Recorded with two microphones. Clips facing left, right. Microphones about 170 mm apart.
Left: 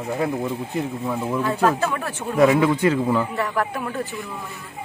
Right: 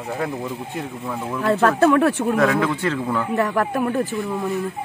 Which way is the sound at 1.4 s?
70° right (ahead or behind).